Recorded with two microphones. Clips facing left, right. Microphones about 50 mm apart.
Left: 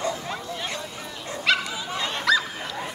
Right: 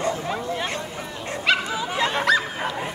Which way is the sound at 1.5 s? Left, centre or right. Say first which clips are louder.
Right 1 dB; right.